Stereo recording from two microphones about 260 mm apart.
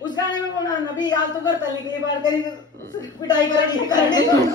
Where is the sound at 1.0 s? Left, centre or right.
Centre.